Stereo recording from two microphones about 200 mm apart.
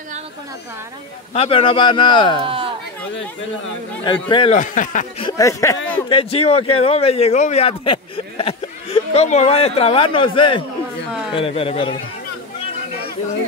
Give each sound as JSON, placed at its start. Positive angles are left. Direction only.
{"t": 1.3, "sound": "a man's voice", "side_deg": 30}
{"t": 2.4, "sound": "speech", "side_deg": -25}
{"t": 4.0, "sound": "a man's voice", "side_deg": 25}
{"t": 4.6, "sound": "speech", "side_deg": 40}
{"t": 5.2, "sound": "speech", "side_deg": 15}
{"t": 6.0, "sound": "a man's voice", "side_deg": 30}